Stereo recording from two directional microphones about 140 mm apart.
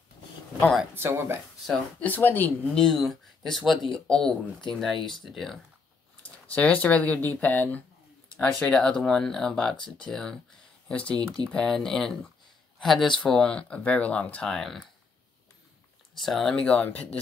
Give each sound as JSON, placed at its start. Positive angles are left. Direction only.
{"t": 0.9, "sound": "speech", "side_deg": -15}
{"t": 2.0, "sound": "speech", "side_deg": 10}
{"t": 2.7, "sound": "speech", "side_deg": 0}
{"t": 16.2, "sound": "speech", "side_deg": 0}